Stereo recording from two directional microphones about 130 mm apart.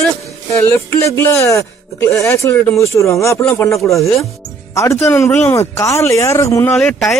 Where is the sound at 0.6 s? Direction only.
20° left (ahead or behind).